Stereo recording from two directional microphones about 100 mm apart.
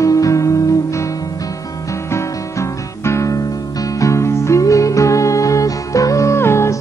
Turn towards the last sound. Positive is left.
turn(degrees=25)  # may be behind; listen again after turning